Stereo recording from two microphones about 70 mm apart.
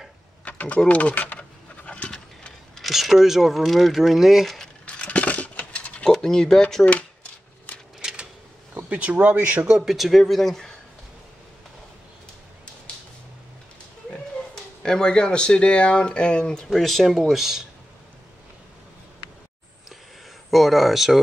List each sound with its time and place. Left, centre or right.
0.5 s speech: centre
1.9 s a sound: centre
2.8 s speech: centre
4.8 s a sound: centre
6.1 s speech: centre
8.0 s a sound: centre
8.8 s speech: right
9.7 s speech: centre
14.1 s speech: centre
20.5 s speech: centre